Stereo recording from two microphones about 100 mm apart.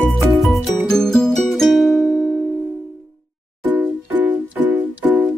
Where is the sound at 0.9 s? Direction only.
5° left (ahead or behind).